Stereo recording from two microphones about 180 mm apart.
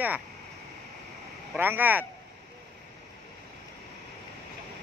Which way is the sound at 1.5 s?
10° right (ahead or behind).